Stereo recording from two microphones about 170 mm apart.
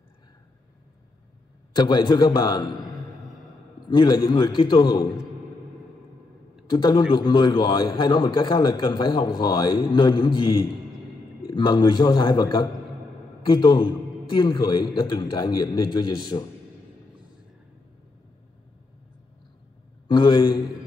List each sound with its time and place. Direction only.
1.7 s a man's voice: 25° left (ahead or behind)
6.7 s a man's voice: 25° left (ahead or behind)
11.5 s a man's voice: 25° left (ahead or behind)
20.1 s a man's voice: 25° left (ahead or behind)